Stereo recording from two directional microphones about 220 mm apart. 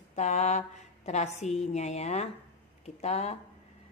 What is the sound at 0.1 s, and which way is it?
A woman's voice, 30° left (ahead or behind).